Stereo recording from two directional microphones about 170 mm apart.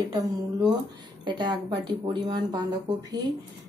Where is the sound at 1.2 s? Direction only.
25° right (ahead or behind).